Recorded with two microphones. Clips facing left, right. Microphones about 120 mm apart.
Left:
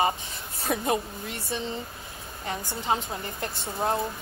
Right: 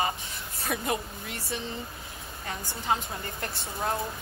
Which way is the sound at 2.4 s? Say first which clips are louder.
Left 2 dB; 25° left (ahead or behind).